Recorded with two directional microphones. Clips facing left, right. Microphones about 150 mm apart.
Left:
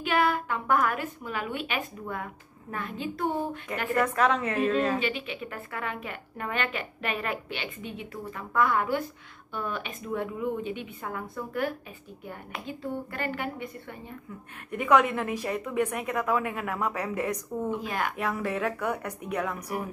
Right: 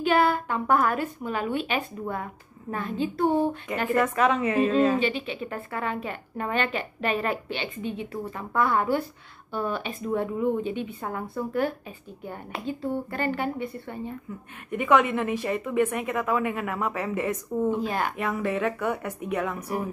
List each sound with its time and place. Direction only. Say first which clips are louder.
0.0 s a woman's voice: right 4 dB; 35° right (ahead or behind)
3.9 s speech: right 2 dB; centre (ahead or behind)
5.0 s a woman's voice: right 4 dB; 30° right (ahead or behind)
14.7 s speech: right 1 dB; centre (ahead or behind)
17.6 s a woman's voice: right 4 dB; 30° right (ahead or behind)
18.1 s speech: right 2 dB; centre (ahead or behind)